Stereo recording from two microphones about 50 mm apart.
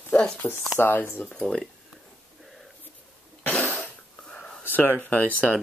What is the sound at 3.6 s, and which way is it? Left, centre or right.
Whispering, left.